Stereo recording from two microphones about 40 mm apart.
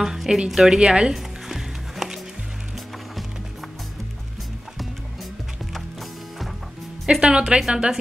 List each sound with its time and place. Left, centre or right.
0.0 s speech: centre
0.7 s a woman's voice: right
1.1 s music: centre
7.1 s a woman's voice: right